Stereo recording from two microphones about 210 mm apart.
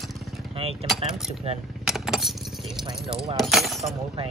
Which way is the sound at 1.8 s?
Centre (ahead or behind).